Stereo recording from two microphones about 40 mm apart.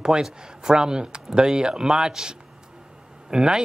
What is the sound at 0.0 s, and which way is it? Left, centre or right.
Speech, centre.